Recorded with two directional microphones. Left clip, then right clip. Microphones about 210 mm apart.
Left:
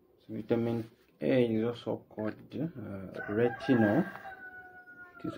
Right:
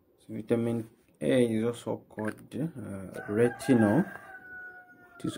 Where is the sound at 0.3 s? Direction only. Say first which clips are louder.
Right 2 dB; 25° right (ahead or behind).